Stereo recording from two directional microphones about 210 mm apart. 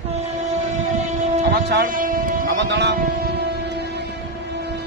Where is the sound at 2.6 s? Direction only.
55° right (ahead or behind).